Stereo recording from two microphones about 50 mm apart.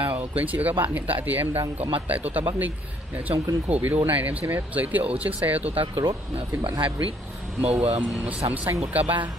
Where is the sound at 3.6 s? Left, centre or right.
Right.